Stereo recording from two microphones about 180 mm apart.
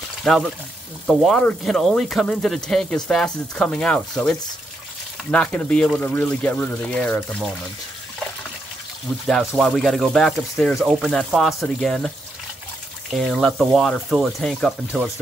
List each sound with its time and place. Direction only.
0.2 s speech: centre (ahead or behind)
9.3 s speech: centre (ahead or behind)
13.1 s speech: centre (ahead or behind)